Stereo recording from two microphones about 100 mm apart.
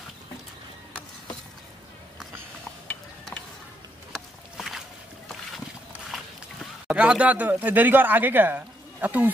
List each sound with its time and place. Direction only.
4.1 s boat: centre (ahead or behind)
6.9 s speech: 10° right (ahead or behind)